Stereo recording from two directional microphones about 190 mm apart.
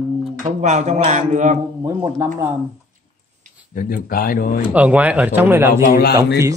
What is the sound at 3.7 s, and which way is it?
Speech, 50° left (ahead or behind).